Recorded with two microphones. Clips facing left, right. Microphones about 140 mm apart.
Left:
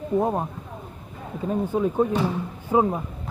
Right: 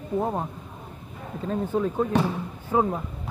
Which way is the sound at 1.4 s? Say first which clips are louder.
Left 2 dB; 15° left (ahead or behind).